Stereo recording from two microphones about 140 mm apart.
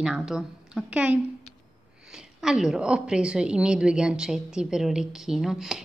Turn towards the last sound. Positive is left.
turn(degrees=-5)  # may be behind; listen again after turning